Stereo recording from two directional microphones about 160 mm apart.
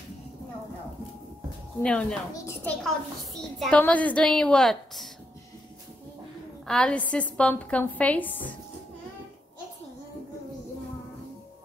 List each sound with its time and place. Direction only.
1.8 s a woman's voice: 5° left (ahead or behind)
2.3 s a child's voice: 20° left (ahead or behind)
3.5 s a woman's voice: 5° left (ahead or behind)
6.7 s a woman's voice: 5° left (ahead or behind)